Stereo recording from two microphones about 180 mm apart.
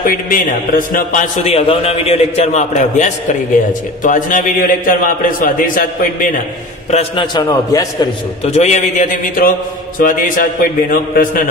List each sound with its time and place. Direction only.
0.0 s a man's voice: 50° left (ahead or behind)
1.5 s a man's voice: 35° left (ahead or behind)
6.9 s a man's voice: 30° left (ahead or behind)
7.4 s a man's voice: 20° left (ahead or behind)
8.5 s a man's voice: 40° left (ahead or behind)